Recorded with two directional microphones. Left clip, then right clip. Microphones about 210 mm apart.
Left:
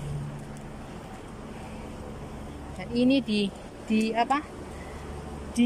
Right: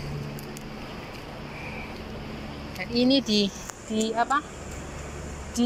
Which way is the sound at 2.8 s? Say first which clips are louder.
Right 2 dB; 10° left (ahead or behind).